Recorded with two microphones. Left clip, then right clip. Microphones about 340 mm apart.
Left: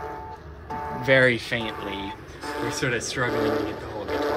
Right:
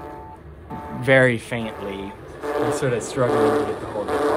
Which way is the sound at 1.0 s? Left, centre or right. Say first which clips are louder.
Right 3 dB; centre.